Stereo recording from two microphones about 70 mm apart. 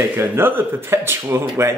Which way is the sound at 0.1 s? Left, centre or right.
Right.